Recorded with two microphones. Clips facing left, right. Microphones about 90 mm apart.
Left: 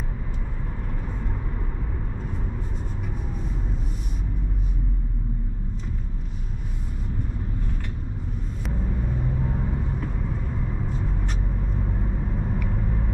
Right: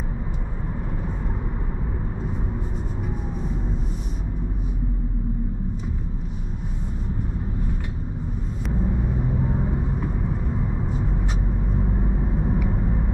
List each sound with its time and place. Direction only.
8.8 s vehicle: 15° right (ahead or behind)
12.0 s vehicle: 20° right (ahead or behind)